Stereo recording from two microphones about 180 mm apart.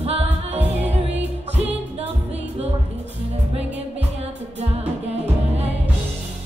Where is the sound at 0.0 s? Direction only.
35° right (ahead or behind).